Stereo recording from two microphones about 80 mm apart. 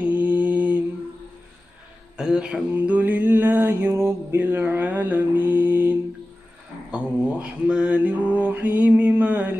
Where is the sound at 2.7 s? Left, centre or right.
Right.